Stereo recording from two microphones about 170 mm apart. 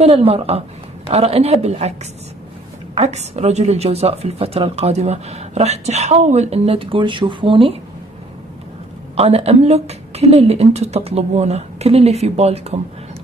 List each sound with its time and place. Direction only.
0.0 s a woman's voice: 35° right (ahead or behind)
9.1 s a woman's voice: 35° right (ahead or behind)